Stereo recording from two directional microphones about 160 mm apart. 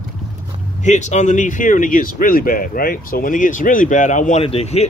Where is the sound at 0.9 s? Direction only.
45° left (ahead or behind).